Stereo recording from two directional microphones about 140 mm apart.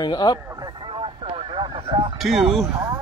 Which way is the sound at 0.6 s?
35° right (ahead or behind).